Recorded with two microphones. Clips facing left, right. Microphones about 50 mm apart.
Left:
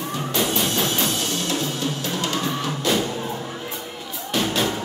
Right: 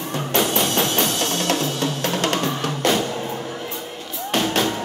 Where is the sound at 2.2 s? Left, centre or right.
Right.